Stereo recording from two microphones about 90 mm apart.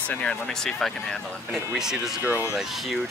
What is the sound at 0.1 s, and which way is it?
Speech, 10° left (ahead or behind).